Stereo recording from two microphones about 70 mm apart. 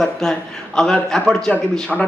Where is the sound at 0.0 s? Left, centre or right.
Centre.